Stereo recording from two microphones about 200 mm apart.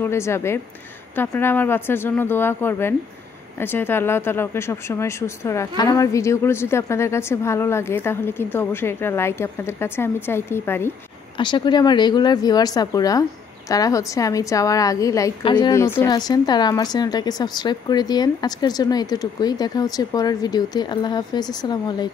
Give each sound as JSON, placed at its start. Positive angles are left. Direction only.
{"t": 0.0, "sound": "speech", "side_deg": 15}
{"t": 11.3, "sound": "speech", "side_deg": 25}